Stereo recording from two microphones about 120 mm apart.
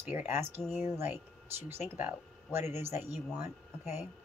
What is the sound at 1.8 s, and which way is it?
Speech, 20° right (ahead or behind).